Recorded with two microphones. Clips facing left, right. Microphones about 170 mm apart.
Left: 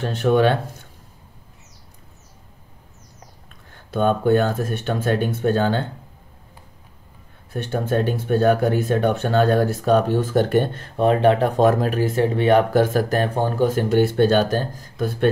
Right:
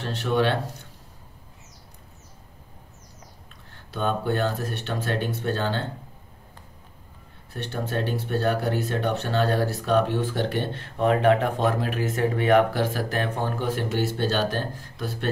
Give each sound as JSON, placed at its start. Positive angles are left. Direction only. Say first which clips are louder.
{"t": 0.0, "sound": "speech", "louder": "left 6 dB", "side_deg": 50}
{"t": 3.9, "sound": "speech", "louder": "left 8 dB", "side_deg": 50}
{"t": 7.5, "sound": "speech", "louder": "left 7 dB", "side_deg": 50}
{"t": 11.1, "sound": "speech", "louder": "left 3 dB", "side_deg": 30}
{"t": 12.7, "sound": "speech", "louder": "left 8 dB", "side_deg": 45}
{"t": 13.8, "sound": "speech", "louder": "left 9 dB", "side_deg": 55}